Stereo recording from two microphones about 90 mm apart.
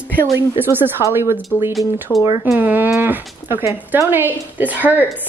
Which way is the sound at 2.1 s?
20° left (ahead or behind).